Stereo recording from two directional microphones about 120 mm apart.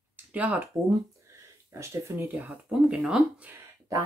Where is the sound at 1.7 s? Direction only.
20° right (ahead or behind).